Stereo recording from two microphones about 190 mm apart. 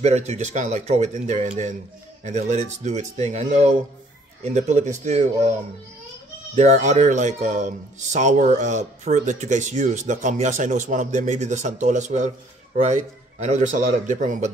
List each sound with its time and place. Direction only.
0.0 s speech: 35° right (ahead or behind)